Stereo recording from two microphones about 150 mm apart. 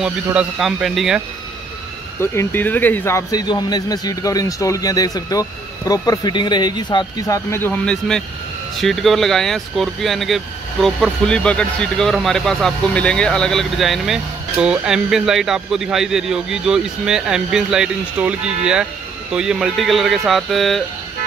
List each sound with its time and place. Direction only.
0.0 s speech: 5° right (ahead or behind)
2.3 s speech: 15° left (ahead or behind)